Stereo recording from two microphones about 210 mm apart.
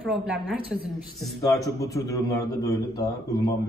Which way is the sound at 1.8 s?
15° left (ahead or behind).